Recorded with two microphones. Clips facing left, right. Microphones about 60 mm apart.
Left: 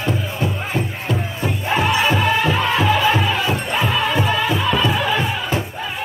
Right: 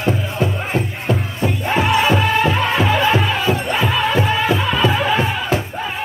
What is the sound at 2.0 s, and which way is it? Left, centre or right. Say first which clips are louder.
Music: right 2 dB; centre.